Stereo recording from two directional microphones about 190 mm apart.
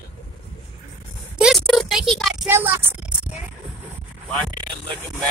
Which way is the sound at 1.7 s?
Centre (ahead or behind).